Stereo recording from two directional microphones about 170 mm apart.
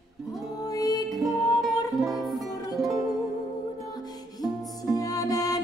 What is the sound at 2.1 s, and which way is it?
Music, centre (ahead or behind).